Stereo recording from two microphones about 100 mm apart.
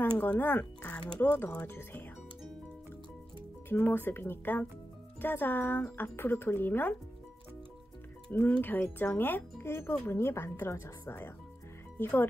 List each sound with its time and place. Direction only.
0.0 s speech: 20° left (ahead or behind)
3.6 s speech: 20° left (ahead or behind)
8.3 s speech: 15° left (ahead or behind)